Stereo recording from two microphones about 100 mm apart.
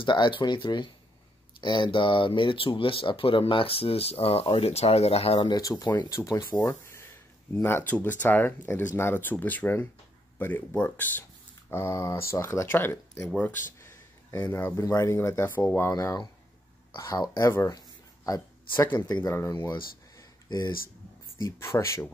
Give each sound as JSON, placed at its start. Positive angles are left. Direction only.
{"t": 0.0, "sound": "speech", "side_deg": 50}
{"t": 5.4, "sound": "speech", "side_deg": 40}
{"t": 7.5, "sound": "speech", "side_deg": 25}
{"t": 11.7, "sound": "speech", "side_deg": 25}
{"t": 13.7, "sound": "a sound", "side_deg": 30}
{"t": 14.5, "sound": "speech", "side_deg": 25}
{"t": 17.4, "sound": "speech", "side_deg": 25}
{"t": 17.6, "sound": "a sound", "side_deg": 35}
{"t": 19.2, "sound": "speech", "side_deg": 25}
{"t": 20.4, "sound": "speech", "side_deg": 40}
{"t": 21.4, "sound": "speech", "side_deg": 30}